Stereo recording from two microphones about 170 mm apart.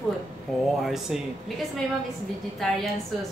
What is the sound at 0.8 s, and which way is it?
Speech, centre (ahead or behind).